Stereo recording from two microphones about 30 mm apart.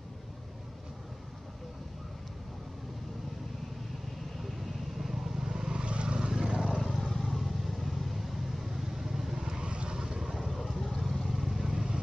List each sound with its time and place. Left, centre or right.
4.9 s vehicle: centre
5.4 s vehicle: right
6.5 s vehicle: centre
9.4 s vehicle: right
9.9 s vehicle: centre
10.3 s vehicle: centre
11.6 s vehicle: right